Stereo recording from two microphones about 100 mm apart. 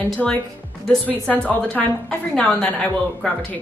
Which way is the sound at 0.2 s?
5° left (ahead or behind).